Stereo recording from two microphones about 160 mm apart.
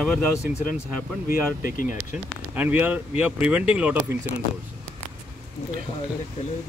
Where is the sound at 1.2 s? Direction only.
60° left (ahead or behind).